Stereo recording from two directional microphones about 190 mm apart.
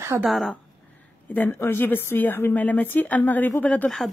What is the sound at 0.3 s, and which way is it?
A woman's voice, centre (ahead or behind).